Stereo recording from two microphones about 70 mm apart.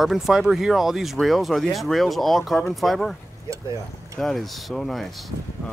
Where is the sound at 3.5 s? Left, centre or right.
Right.